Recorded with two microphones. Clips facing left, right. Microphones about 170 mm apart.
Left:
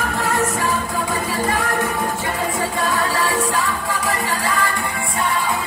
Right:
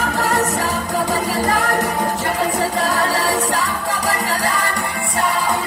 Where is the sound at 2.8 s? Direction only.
40° right (ahead or behind).